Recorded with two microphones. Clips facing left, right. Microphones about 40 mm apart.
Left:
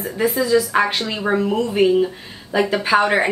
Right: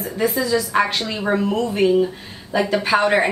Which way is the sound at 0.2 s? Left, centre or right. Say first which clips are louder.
Left 3 dB; centre.